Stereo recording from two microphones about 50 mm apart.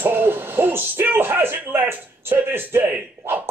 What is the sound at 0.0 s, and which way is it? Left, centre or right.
Hoot, right.